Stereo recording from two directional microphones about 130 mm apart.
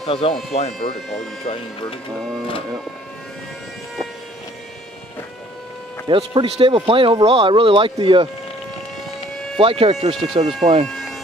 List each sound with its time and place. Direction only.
0.0 s speech: 45° left (ahead or behind)
6.0 s speech: 40° right (ahead or behind)
9.6 s speech: 45° right (ahead or behind)
10.9 s a sound: 5° left (ahead or behind)